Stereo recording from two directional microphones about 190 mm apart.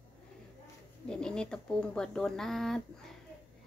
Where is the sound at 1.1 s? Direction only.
5° left (ahead or behind).